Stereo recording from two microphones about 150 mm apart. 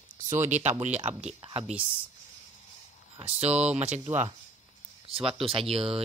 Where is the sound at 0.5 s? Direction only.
50° right (ahead or behind).